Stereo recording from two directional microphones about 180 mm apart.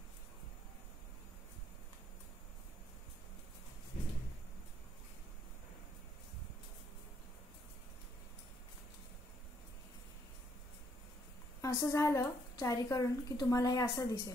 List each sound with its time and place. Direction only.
11.6 s a woman's voice: 20° left (ahead or behind)